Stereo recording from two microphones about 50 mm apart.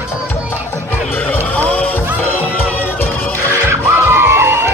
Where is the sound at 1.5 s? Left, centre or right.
Left.